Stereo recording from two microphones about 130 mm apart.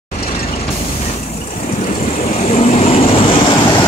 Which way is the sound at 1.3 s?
60° left (ahead or behind).